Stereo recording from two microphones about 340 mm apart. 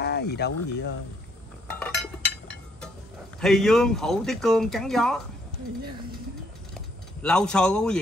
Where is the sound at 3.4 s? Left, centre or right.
Centre.